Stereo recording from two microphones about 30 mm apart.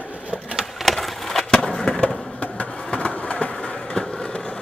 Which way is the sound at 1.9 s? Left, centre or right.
Left.